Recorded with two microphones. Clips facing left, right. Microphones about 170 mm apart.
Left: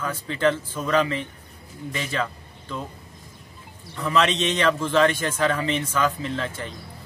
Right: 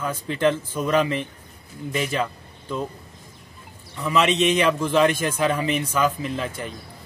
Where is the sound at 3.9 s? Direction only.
5° right (ahead or behind).